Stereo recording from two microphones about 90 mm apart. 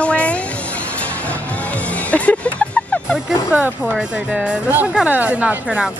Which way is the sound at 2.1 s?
15° left (ahead or behind).